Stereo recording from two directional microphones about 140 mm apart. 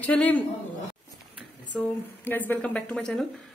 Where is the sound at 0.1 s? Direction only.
10° left (ahead or behind).